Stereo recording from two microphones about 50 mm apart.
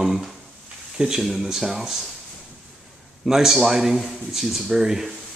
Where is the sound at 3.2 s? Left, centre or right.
Centre.